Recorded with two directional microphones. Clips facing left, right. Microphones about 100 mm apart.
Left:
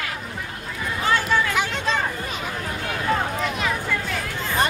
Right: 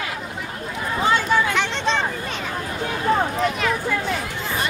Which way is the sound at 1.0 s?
20° right (ahead or behind).